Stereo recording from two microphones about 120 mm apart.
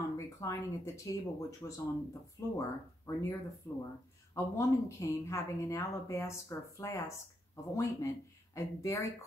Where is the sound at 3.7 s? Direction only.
25° left (ahead or behind).